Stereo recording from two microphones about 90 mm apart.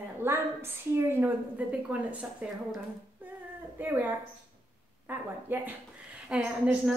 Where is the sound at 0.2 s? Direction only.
30° right (ahead or behind).